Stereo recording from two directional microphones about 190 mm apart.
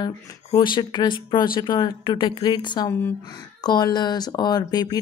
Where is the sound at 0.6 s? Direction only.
25° left (ahead or behind).